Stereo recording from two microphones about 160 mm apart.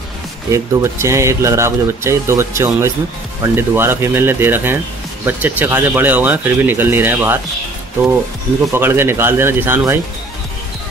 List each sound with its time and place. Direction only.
0.5 s speech: 15° right (ahead or behind)
8.7 s speech: 15° right (ahead or behind)